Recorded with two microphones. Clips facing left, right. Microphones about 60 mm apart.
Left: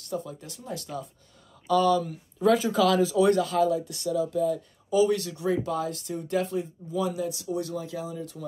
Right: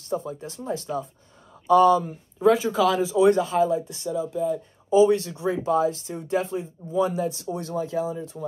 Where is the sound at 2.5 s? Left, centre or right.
Centre.